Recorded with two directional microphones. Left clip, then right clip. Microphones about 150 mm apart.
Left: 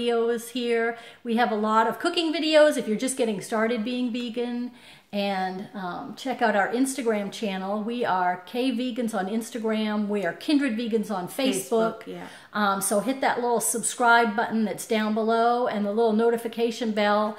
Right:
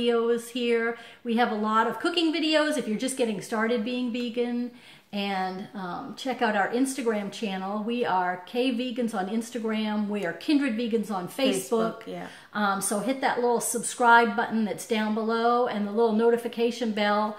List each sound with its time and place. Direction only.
0.0 s a woman's voice: 25° left (ahead or behind)